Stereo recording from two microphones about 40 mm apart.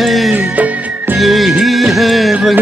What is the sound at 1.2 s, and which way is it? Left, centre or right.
Music, centre.